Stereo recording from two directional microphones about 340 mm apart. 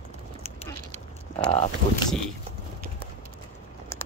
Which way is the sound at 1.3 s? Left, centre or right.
Centre.